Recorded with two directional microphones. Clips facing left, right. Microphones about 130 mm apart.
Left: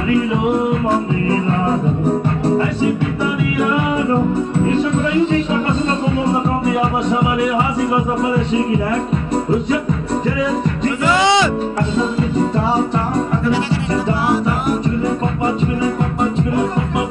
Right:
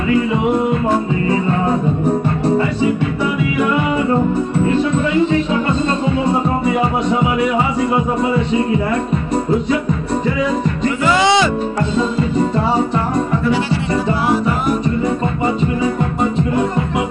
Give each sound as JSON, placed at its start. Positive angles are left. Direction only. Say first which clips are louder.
{"t": 1.3, "sound": "music", "louder": "right 1 dB", "side_deg": -30}
{"t": 3.5, "sound": "music", "louder": "right 1 dB", "side_deg": -25}
{"t": 6.7, "sound": "music", "louder": "right 1 dB", "side_deg": -25}
{"t": 11.1, "sound": "speech", "louder": "even", "side_deg": -15}
{"t": 12.5, "sound": "music", "louder": "right 1 dB", "side_deg": -25}